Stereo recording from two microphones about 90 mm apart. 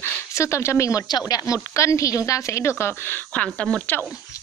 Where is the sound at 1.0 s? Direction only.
45° left (ahead or behind); by 3.9 s 10° left (ahead or behind).